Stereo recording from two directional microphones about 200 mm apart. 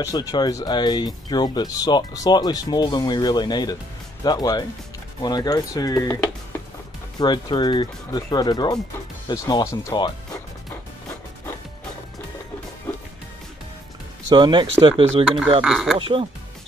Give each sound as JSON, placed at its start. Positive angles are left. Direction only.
{"t": 0.0, "sound": "speech", "side_deg": 20}
{"t": 7.2, "sound": "speech", "side_deg": 20}
{"t": 12.9, "sound": "music", "side_deg": 10}
{"t": 14.3, "sound": "speech", "side_deg": -25}
{"t": 15.2, "sound": "speech", "side_deg": 0}
{"t": 16.0, "sound": "speech", "side_deg": -25}